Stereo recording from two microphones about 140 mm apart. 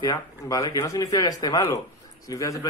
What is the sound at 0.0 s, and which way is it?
A man's voice, 25° left (ahead or behind).